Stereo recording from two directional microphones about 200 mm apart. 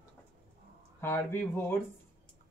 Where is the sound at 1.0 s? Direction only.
10° left (ahead or behind).